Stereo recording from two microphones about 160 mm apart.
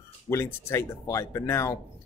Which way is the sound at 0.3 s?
15° left (ahead or behind).